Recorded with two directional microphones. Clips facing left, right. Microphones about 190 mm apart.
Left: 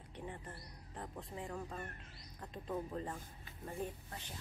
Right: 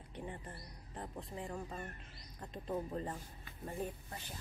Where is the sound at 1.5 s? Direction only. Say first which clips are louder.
Right 1 dB; 15° right (ahead or behind).